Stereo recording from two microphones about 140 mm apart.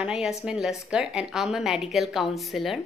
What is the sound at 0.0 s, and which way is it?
A woman's voice, 5° right (ahead or behind).